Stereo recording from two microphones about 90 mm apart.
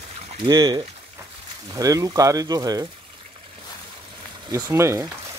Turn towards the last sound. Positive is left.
turn(degrees=-30)  # may be behind; listen again after turning